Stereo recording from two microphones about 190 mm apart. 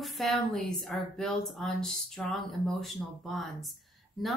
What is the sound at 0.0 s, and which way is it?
Speech, centre (ahead or behind).